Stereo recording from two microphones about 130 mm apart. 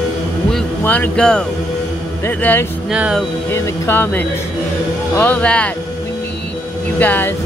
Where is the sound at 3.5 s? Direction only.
20° left (ahead or behind).